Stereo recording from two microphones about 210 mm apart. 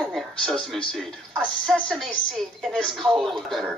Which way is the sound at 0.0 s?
Centre (ahead or behind).